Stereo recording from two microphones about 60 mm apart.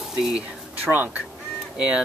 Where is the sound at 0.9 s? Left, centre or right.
Centre.